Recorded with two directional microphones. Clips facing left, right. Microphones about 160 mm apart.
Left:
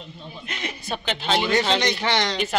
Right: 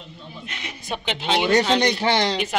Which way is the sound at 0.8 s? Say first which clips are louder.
Right 1 dB; 15° right (ahead or behind).